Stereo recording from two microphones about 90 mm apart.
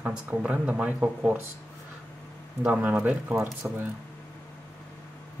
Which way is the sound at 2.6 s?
20° right (ahead or behind).